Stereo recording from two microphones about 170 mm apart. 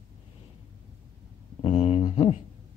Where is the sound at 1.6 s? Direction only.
35° left (ahead or behind).